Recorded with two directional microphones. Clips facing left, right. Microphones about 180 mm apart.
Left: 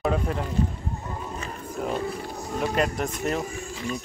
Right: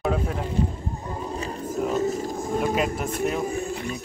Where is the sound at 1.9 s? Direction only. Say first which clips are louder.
Right 5 dB; 45° right (ahead or behind).